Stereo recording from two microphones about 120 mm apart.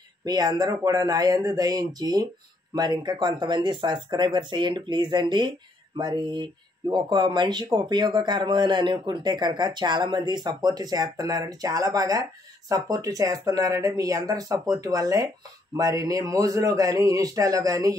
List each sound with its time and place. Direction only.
0.2 s speech: 35° right (ahead or behind)